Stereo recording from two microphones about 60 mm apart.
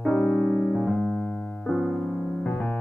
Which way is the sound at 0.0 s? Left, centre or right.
Centre.